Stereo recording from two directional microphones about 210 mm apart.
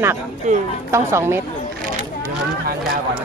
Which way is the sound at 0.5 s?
35° right (ahead or behind).